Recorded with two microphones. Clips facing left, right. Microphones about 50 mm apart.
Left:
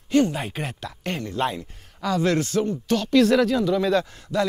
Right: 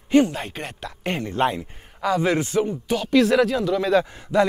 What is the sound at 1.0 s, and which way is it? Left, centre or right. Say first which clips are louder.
Speech: right 3 dB; centre.